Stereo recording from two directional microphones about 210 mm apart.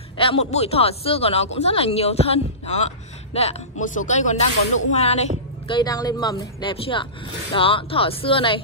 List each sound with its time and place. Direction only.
0.2 s speech: 30° left (ahead or behind)
5.7 s speech: 20° left (ahead or behind)